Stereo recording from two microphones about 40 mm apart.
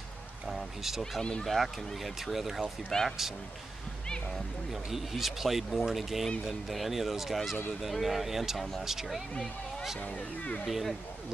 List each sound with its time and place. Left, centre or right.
0.5 s a sound: centre
1.4 s speech: centre
2.9 s speech: centre
4.9 s speech: centre
10.7 s speech: centre